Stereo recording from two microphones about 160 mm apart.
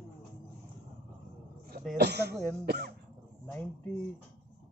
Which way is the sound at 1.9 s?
90° right.